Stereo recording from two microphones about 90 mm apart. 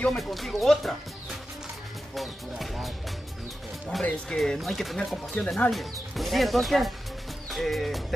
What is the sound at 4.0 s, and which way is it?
Speech, 10° left (ahead or behind).